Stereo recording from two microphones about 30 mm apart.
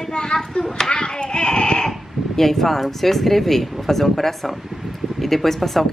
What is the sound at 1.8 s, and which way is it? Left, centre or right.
A woman's voice, centre.